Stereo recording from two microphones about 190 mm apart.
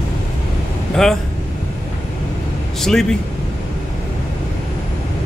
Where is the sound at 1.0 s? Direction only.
Centre (ahead or behind).